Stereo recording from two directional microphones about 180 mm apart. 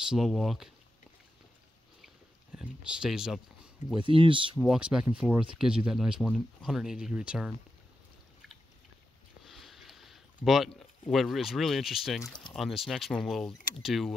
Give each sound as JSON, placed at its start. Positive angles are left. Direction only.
{"t": 0.1, "sound": "speech", "side_deg": 0}
{"t": 2.5, "sound": "speech", "side_deg": -5}
{"t": 4.0, "sound": "speech", "side_deg": -30}
{"t": 4.6, "sound": "speech", "side_deg": -5}
{"t": 9.4, "sound": "a sound", "side_deg": 0}
{"t": 12.5, "sound": "speech", "side_deg": 0}